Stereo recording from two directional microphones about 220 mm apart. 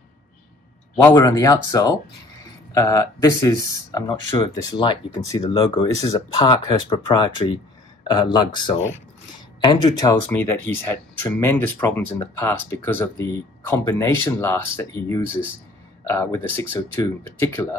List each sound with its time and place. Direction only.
1.0 s speech: 15° left (ahead or behind)